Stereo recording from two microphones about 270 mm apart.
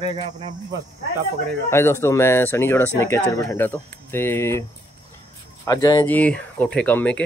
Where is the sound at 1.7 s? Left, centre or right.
Centre.